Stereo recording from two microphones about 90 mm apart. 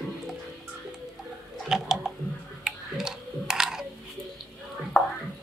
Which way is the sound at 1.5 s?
5° right (ahead or behind).